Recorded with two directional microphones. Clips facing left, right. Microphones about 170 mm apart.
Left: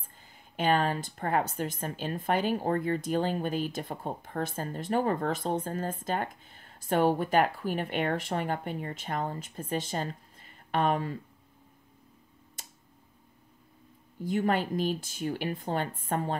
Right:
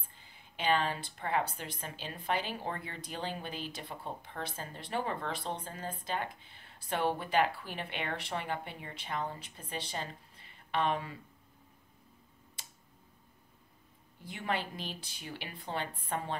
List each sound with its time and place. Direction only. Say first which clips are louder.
0.2 s speech: left 6 dB; 45° left (ahead or behind)
12.6 s tick: left 3 dB; 45° left (ahead or behind)
14.2 s speech: left 9 dB; 45° left (ahead or behind)